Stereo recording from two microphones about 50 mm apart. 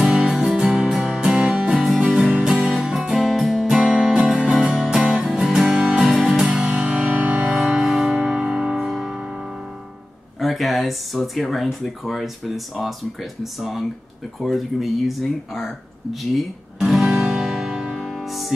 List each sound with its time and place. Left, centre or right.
0.0 s music: centre
1.0 s music: right
1.7 s music: centre
3.6 s music: centre
6.7 s music: right
7.5 s music: centre
10.4 s speech: centre
14.4 s a sound: centre
18.0 s music: centre